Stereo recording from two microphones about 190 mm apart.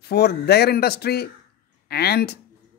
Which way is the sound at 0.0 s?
60° left (ahead or behind).